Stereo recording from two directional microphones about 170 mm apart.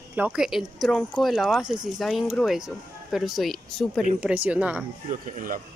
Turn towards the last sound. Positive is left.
turn(degrees=-50)  # may be behind; listen again after turning